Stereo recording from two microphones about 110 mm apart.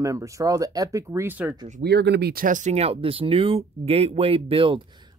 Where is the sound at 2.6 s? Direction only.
75° right (ahead or behind); by 4.8 s 55° right (ahead or behind).